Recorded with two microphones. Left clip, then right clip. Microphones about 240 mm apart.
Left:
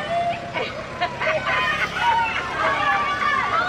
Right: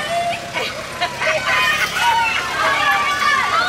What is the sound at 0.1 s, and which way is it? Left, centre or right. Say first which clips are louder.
Vehicle: even; centre.